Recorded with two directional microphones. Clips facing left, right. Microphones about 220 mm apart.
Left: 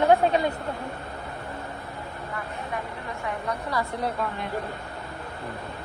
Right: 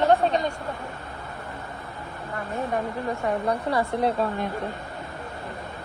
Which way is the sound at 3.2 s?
35° right (ahead or behind).